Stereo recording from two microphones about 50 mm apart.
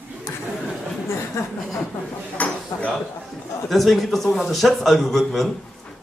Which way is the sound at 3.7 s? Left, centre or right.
Centre.